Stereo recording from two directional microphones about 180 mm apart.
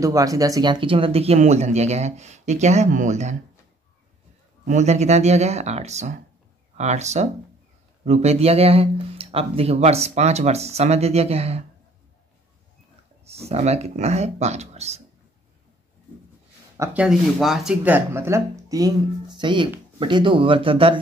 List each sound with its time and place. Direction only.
0.0 s speech: 20° right (ahead or behind); by 3.3 s 40° right (ahead or behind)
4.6 s speech: 40° right (ahead or behind)
13.2 s speech: 35° right (ahead or behind)
16.7 s speech: 10° right (ahead or behind); by 21.0 s 30° right (ahead or behind)